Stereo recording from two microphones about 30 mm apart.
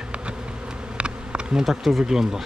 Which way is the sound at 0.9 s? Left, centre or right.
Right.